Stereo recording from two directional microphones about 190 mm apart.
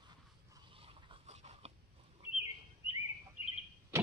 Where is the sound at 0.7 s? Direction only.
30° right (ahead or behind).